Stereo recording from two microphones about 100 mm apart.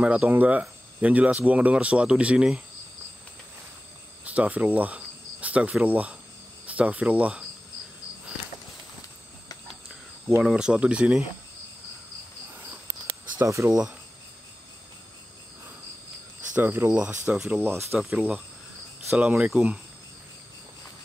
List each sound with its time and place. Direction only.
0.0 s speech: 15° right (ahead or behind)
4.2 s cricket: 15° right (ahead or behind)
6.6 s speech: 15° right (ahead or behind)
10.4 s speech: 10° right (ahead or behind)
13.0 s a sound: 30° right (ahead or behind)
16.5 s speech: 20° right (ahead or behind)
16.9 s speech: 10° right (ahead or behind)
17.6 s speech: 25° right (ahead or behind)